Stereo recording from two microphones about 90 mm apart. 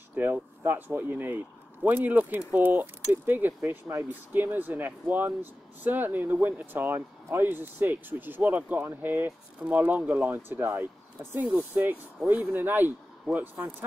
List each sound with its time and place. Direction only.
0.1 s speech: 25° right (ahead or behind)